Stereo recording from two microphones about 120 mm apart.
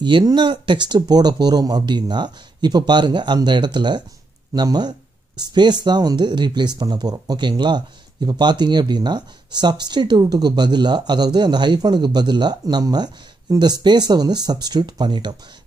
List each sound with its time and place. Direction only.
0.0 s speech: 40° right (ahead or behind)